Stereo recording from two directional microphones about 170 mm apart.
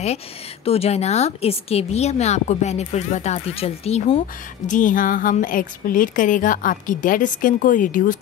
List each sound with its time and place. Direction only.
0.7 s a woman's voice: 35° left (ahead or behind)
4.6 s a woman's voice: 50° left (ahead or behind)